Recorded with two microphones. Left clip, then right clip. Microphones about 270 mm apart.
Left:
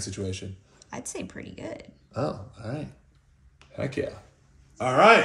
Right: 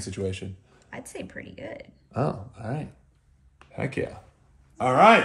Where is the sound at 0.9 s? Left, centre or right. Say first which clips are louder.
Left 1 dB; centre.